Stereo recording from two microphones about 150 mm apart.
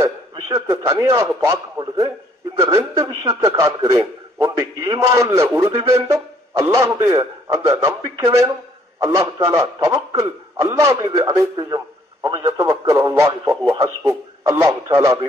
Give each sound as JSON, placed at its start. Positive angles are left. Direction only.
{"t": 0.0, "sound": "a man's voice", "side_deg": -20}